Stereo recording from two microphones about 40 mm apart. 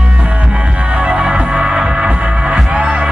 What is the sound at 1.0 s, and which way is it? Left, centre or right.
Music, right.